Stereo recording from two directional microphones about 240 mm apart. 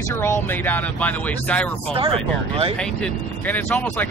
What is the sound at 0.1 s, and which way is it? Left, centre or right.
Speech, centre.